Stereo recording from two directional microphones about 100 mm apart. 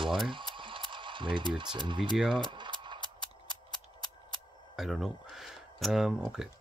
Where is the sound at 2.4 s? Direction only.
50° right (ahead or behind).